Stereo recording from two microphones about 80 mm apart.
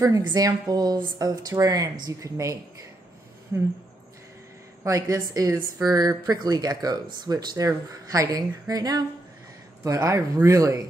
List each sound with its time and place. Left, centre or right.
0.2 s a woman's voice: right
3.5 s speech: right
4.8 s a woman's voice: right
10.0 s a woman's voice: right